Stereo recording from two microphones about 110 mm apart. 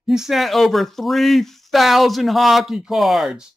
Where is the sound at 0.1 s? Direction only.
5° right (ahead or behind).